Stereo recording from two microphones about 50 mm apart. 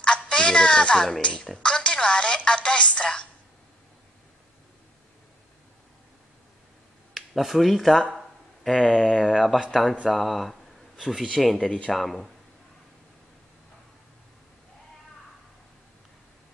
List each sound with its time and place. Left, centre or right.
0.0 s a sound: centre
1.2 s a woman's voice: centre
7.2 s speech: centre
8.1 s a sound: centre
8.7 s a woman's voice: centre
11.3 s a woman's voice: centre